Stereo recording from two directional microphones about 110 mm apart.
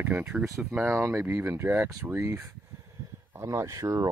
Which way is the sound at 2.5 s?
25° right (ahead or behind).